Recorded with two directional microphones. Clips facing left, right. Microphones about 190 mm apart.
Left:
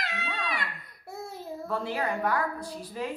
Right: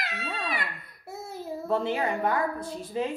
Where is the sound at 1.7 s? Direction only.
20° right (ahead or behind).